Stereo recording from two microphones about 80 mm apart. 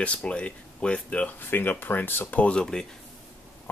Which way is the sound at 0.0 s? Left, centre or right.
Centre.